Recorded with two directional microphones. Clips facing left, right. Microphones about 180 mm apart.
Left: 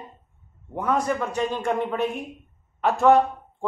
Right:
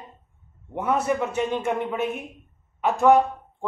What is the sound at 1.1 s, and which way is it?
Speech, 15° right (ahead or behind).